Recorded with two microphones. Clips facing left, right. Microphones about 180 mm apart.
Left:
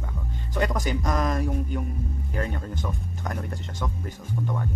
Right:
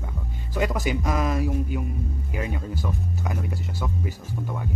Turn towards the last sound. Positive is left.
turn(degrees=-5)  # may be behind; listen again after turning